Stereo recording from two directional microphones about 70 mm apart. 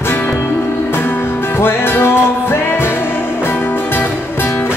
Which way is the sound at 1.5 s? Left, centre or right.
Left.